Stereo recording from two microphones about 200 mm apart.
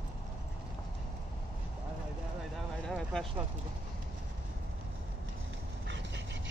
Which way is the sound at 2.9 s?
Centre (ahead or behind).